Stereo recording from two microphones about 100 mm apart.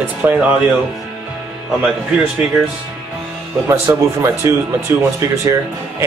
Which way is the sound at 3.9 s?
25° right (ahead or behind).